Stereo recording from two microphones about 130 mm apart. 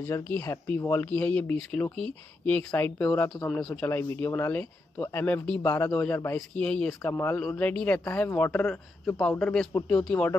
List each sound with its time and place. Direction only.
0.0 s speech: 15° left (ahead or behind)
3.4 s speech: 5° left (ahead or behind)
6.5 s speech: 10° left (ahead or behind)
7.1 s speech: 20° left (ahead or behind)